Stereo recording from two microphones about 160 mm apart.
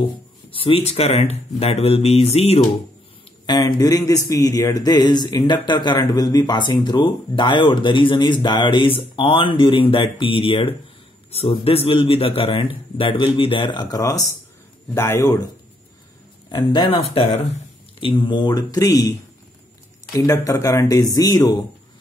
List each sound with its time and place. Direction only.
0.5 s a man's voice: 35° left (ahead or behind)
3.4 s a man's voice: 25° left (ahead or behind)
16.4 s a man's voice: 30° left (ahead or behind)